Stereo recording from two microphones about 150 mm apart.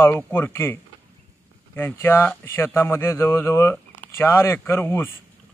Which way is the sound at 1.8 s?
15° left (ahead or behind).